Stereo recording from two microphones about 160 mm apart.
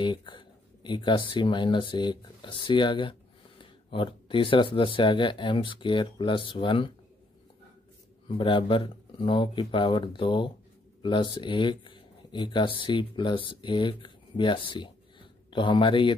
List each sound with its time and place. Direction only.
0.0 s speech: 30° left (ahead or behind)
8.3 s speech: 30° left (ahead or behind)